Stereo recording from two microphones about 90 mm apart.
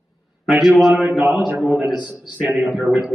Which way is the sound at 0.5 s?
5° right (ahead or behind).